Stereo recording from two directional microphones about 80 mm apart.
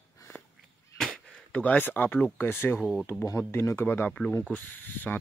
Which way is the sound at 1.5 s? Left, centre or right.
Centre.